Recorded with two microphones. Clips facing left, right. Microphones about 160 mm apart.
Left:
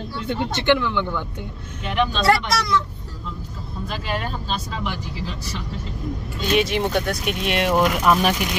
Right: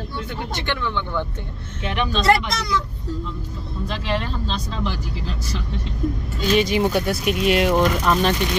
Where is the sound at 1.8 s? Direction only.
Centre (ahead or behind).